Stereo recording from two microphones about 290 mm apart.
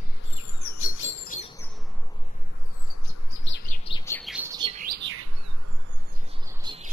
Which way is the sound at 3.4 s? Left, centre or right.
Left.